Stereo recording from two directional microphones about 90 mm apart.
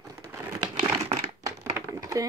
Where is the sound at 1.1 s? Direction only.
40° right (ahead or behind).